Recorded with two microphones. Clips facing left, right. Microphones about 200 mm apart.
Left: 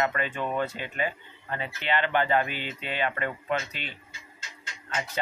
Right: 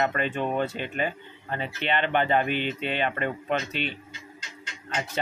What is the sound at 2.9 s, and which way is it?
Speech, 25° right (ahead or behind).